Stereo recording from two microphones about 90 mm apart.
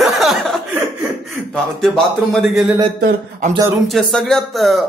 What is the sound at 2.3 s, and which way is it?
Speech, 5° right (ahead or behind).